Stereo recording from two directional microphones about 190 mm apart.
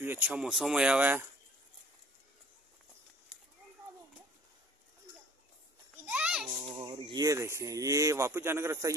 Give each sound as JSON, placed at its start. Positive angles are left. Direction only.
{"t": 0.0, "sound": "speech", "side_deg": -10}
{"t": 6.0, "sound": "children playing", "side_deg": -5}
{"t": 6.7, "sound": "speech", "side_deg": -25}